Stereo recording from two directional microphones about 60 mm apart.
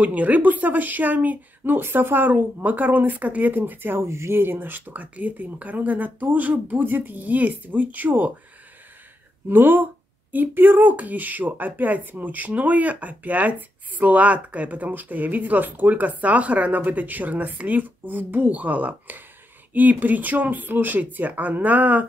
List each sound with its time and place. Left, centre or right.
0.0 s speech: right
9.5 s speech: right